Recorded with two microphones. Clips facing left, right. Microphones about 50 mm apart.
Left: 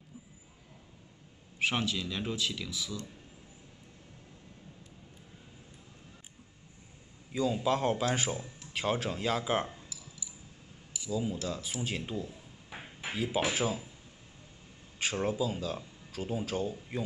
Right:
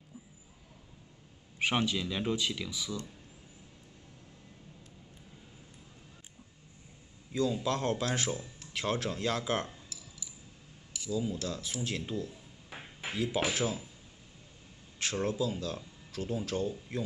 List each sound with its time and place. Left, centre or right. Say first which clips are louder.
1.6 s speech: right 1 dB; centre
7.3 s speech: left 1 dB; centre
11.1 s speech: left 1 dB; centre
15.0 s speech: left 1 dB; centre